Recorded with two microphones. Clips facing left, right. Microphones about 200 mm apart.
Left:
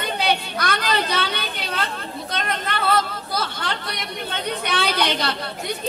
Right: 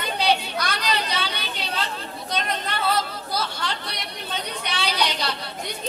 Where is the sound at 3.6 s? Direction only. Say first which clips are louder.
Left 2 dB; 55° left (ahead or behind).